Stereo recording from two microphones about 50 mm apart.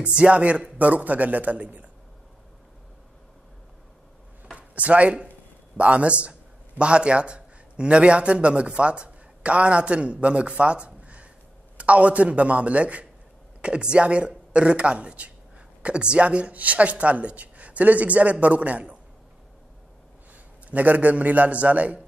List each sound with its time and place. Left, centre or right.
0.2 s speech: right
4.6 s a man's voice: right
20.7 s a man's voice: right